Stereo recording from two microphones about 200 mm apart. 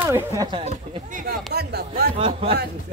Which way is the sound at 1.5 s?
55° right (ahead or behind).